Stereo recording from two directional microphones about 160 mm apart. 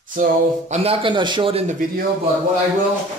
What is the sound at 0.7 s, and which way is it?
Speech, 40° right (ahead or behind).